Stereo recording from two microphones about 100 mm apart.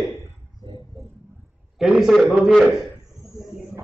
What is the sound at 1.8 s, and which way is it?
Speech, 5° right (ahead or behind).